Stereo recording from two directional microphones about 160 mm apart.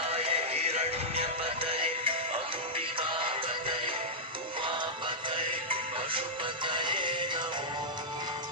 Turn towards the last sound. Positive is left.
turn(degrees=-30)  # may be behind; listen again after turning